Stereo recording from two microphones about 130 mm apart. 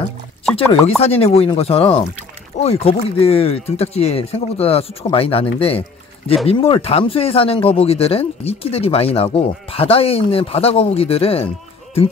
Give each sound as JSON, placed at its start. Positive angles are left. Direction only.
{"t": 0.8, "sound": "speech", "side_deg": 50}